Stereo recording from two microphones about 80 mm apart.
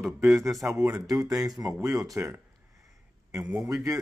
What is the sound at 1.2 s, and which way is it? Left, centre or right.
Speech, right.